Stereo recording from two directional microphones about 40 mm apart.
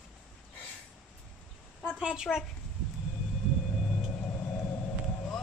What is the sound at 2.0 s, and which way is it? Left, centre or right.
Speech, centre.